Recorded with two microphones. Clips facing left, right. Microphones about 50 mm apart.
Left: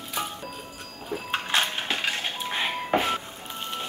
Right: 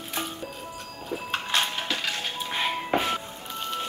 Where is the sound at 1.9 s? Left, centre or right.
Left.